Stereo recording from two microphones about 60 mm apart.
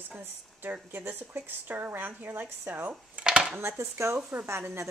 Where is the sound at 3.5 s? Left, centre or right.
Right.